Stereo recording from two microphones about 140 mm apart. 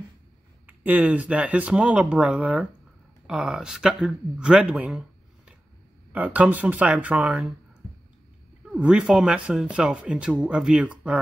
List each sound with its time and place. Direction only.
0.7 s speech: 10° right (ahead or behind)
8.7 s speech: 5° right (ahead or behind)